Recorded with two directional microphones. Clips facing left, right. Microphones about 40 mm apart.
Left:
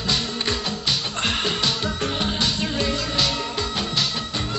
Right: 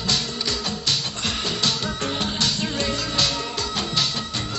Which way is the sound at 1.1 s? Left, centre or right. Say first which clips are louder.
Left 3 dB; left.